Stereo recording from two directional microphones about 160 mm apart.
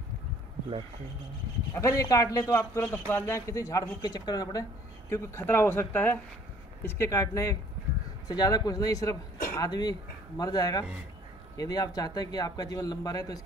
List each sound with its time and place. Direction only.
1.7 s a man's voice: 20° left (ahead or behind)